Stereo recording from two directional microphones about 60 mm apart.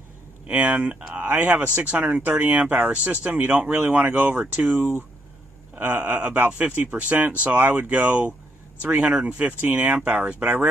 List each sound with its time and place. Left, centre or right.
0.5 s speech: right
5.8 s speech: right